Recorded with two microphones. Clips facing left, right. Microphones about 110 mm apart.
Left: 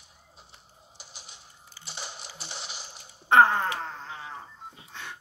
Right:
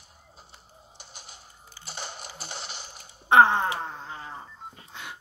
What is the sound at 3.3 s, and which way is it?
Wail, 15° right (ahead or behind).